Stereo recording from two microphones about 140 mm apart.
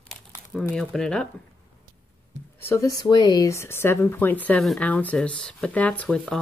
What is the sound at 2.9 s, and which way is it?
Speech, 30° left (ahead or behind).